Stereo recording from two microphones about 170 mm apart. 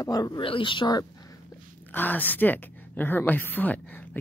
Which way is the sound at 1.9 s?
10° left (ahead or behind).